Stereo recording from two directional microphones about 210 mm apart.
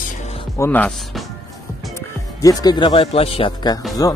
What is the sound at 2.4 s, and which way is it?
Speech, 15° left (ahead or behind).